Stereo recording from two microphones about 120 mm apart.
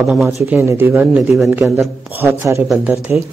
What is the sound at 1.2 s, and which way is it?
Speech, 5° right (ahead or behind).